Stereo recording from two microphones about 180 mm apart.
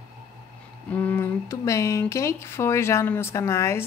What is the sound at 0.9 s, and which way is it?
Speech, 10° left (ahead or behind).